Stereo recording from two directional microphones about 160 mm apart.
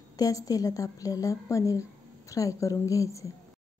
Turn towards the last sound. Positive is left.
turn(degrees=20)  # may be behind; listen again after turning